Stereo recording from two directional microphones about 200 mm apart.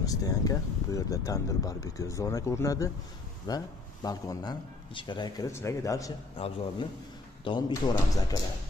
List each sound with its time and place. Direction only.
0.0 s speech: 15° left (ahead or behind)
6.3 s speech: 25° left (ahead or behind)